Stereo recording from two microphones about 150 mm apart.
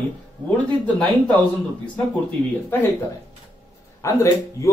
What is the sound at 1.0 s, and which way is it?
Speech, 10° left (ahead or behind).